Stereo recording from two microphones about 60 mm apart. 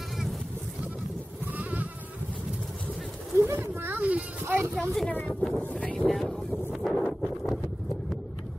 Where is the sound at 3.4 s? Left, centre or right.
Right.